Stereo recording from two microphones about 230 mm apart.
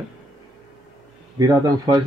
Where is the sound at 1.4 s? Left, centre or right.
Centre.